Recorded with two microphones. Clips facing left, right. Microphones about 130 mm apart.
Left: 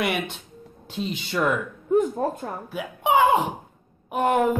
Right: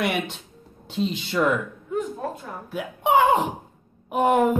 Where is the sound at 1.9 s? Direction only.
45° left (ahead or behind).